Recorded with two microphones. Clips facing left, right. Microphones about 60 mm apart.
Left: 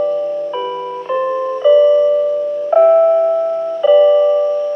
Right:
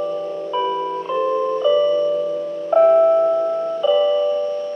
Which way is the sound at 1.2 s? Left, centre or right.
Left.